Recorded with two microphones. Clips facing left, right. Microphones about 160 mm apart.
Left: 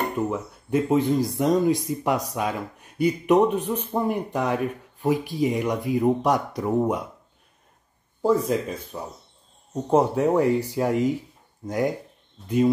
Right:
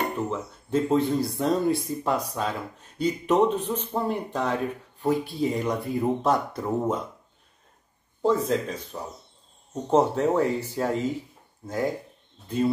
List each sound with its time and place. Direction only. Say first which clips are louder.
0.3 s speech: left 2 dB; 15° left (ahead or behind)
8.2 s speech: left 2 dB; 10° left (ahead or behind)